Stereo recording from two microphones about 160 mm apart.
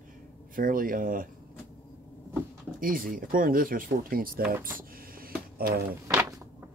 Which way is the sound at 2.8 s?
60° right (ahead or behind).